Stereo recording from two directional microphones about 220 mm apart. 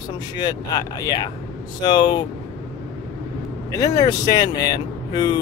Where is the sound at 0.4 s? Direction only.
20° left (ahead or behind).